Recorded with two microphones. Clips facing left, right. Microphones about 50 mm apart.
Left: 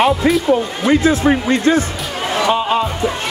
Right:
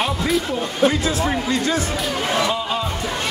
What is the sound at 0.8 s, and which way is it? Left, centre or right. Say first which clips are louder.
Speech: left 6 dB; left.